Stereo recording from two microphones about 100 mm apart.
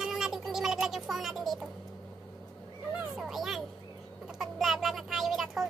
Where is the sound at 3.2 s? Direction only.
5° right (ahead or behind).